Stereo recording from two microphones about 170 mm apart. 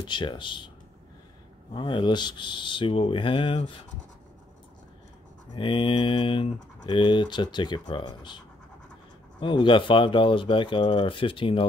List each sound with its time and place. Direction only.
0.0 s speech: 25° left (ahead or behind)
1.7 s speech: 30° left (ahead or behind)
5.5 s speech: 30° left (ahead or behind)
9.4 s speech: 25° left (ahead or behind)